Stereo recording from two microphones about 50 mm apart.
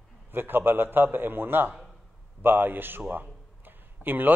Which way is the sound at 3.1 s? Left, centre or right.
Right.